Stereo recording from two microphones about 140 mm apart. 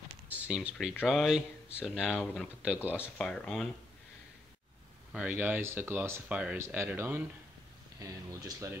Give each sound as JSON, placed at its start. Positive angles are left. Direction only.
{"t": 0.3, "sound": "speech", "side_deg": -10}
{"t": 3.2, "sound": "speech", "side_deg": 5}
{"t": 5.1, "sound": "speech", "side_deg": -10}
{"t": 8.0, "sound": "speech", "side_deg": -25}